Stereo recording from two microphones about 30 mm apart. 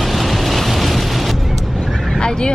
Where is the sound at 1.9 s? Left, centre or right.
Centre.